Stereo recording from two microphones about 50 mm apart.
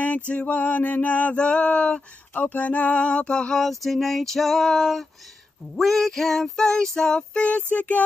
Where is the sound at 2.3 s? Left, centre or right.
Left; by 3.6 s centre.